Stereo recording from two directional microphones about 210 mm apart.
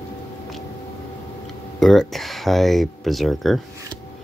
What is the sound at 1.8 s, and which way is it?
Speech, centre (ahead or behind).